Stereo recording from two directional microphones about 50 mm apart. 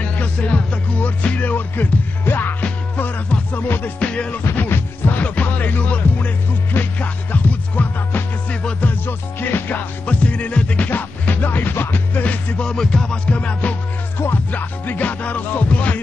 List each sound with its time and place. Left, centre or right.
0.0 s music: left
3.5 s music: left
4.0 s music: left
4.5 s music: left
5.2 s music: left
8.8 s music: left
10.0 s music: left
12.6 s music: centre
14.1 s music: left
14.5 s music: left